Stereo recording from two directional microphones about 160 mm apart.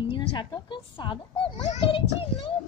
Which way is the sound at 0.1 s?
30° left (ahead or behind).